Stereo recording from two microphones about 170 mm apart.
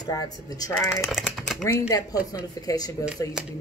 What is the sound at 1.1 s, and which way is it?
Speech, 5° right (ahead or behind).